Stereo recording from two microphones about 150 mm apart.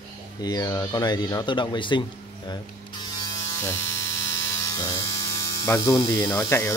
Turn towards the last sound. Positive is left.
turn(degrees=20)  # may be behind; listen again after turning